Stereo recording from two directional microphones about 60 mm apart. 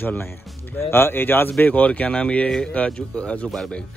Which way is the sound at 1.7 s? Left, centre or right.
Left.